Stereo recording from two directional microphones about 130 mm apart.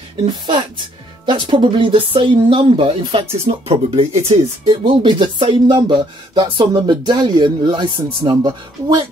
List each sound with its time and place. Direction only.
0.5 s speech: 40° right (ahead or behind)
4.6 s speech: 35° right (ahead or behind)